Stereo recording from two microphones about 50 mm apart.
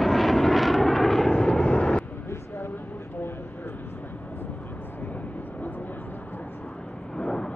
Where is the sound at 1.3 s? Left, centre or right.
Centre.